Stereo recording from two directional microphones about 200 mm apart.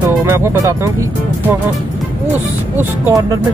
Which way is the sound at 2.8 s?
10° right (ahead or behind).